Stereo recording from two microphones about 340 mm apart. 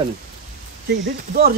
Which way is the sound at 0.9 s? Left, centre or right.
Right.